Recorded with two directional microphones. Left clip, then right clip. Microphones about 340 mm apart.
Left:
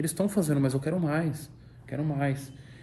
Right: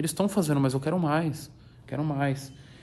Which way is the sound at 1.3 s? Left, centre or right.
Centre.